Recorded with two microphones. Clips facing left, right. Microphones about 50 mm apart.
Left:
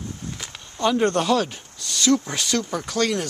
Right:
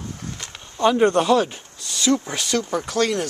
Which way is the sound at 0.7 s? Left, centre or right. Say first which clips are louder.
Right 3 dB; centre.